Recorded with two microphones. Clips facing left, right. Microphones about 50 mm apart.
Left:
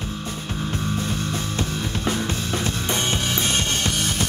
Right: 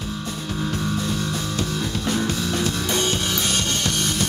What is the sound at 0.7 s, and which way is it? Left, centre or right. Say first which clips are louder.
Music: right 1 dB; left.